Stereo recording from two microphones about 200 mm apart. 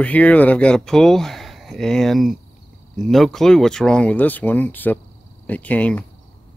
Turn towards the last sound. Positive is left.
turn(degrees=5)  # may be behind; listen again after turning